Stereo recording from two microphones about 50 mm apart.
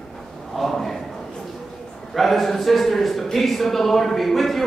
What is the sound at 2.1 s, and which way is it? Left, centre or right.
A man's voice, centre.